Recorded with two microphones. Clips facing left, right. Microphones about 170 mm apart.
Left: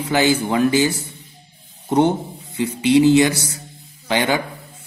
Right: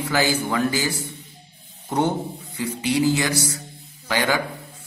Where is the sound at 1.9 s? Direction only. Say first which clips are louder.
Left 6 dB; 20° left (ahead or behind).